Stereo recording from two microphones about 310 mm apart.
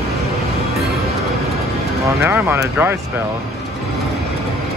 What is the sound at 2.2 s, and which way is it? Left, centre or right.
Speech, centre.